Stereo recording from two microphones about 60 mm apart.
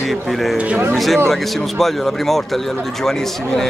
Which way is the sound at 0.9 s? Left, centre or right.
Centre.